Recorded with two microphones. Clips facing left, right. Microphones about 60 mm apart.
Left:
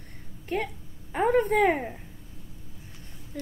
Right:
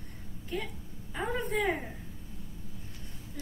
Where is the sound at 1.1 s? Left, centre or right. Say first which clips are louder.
Left 10 dB; left.